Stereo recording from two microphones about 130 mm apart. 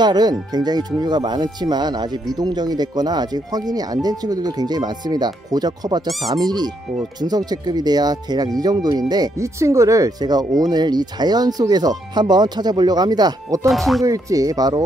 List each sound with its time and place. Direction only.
0.0 s speech: 30° right (ahead or behind)
13.7 s speech: centre (ahead or behind)
14.0 s speech: 25° right (ahead or behind)